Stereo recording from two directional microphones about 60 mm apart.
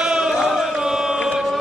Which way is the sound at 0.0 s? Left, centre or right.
Centre.